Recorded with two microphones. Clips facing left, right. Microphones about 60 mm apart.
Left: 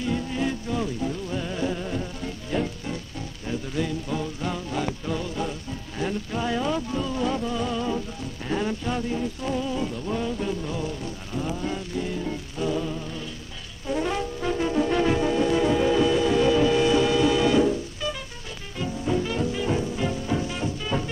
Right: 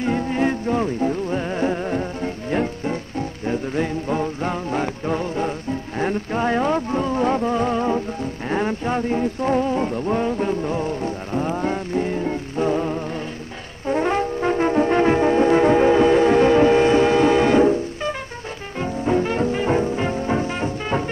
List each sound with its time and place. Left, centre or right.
0.0 s music: right
13.8 s brass instrument: right
18.8 s music: right